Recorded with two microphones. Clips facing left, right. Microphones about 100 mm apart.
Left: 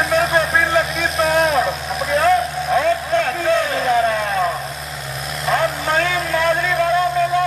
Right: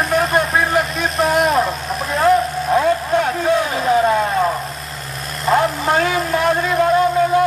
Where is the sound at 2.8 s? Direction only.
20° right (ahead or behind).